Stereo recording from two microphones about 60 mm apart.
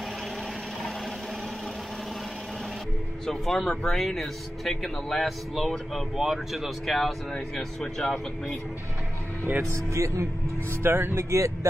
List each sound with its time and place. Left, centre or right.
3.3 s speech: centre
9.7 s speech: right
10.8 s speech: right
11.1 s speech: right